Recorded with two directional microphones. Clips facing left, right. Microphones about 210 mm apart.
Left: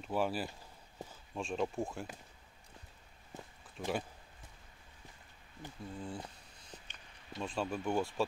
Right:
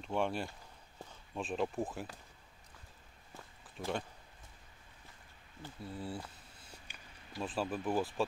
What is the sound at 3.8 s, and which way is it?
Speech, centre (ahead or behind).